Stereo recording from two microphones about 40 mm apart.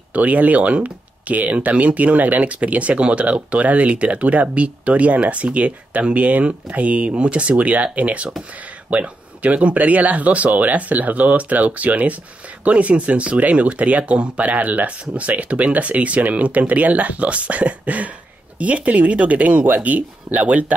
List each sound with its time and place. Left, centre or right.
0.1 s speech: right